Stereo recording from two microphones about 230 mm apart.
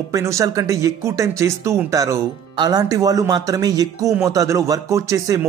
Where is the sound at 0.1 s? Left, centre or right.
Centre.